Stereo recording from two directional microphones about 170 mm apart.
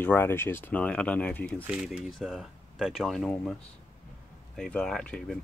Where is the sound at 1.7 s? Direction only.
5° right (ahead or behind).